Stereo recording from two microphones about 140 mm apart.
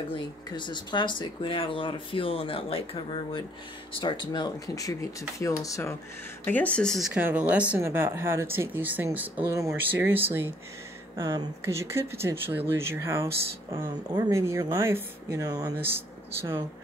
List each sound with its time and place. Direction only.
0.1 s speech: 35° left (ahead or behind)
4.3 s speech: 30° left (ahead or behind)
6.4 s speech: 10° left (ahead or behind)
7.2 s speech: 10° right (ahead or behind)